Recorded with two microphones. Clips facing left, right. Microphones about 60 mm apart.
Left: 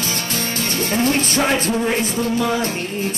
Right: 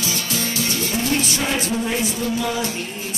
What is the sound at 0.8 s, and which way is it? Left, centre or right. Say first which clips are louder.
Music: left 5 dB; left.